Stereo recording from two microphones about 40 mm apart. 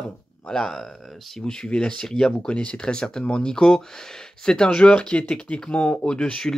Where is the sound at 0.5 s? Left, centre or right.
Centre.